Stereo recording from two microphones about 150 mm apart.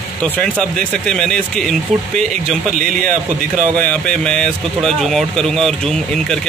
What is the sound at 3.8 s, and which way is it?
Speech, 10° left (ahead or behind).